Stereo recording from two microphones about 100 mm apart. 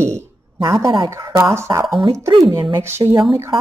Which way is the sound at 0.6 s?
35° right (ahead or behind).